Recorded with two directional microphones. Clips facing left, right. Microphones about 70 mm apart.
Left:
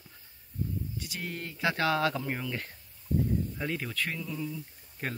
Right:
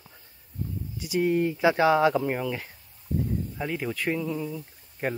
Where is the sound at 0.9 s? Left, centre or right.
Centre.